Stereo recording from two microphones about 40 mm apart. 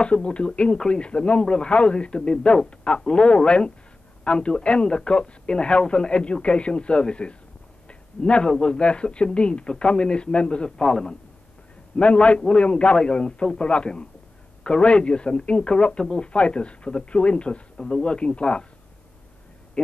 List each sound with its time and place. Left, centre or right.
0.0 s speech: left
10.8 s a man's voice: centre
12.0 s speech: left